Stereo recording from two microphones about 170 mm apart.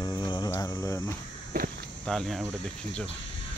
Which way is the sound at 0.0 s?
25° left (ahead or behind).